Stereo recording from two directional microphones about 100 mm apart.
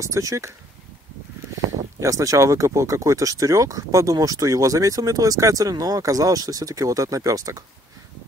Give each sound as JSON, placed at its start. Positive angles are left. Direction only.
{"t": 0.0, "sound": "speech", "side_deg": -30}
{"t": 2.0, "sound": "speech", "side_deg": -30}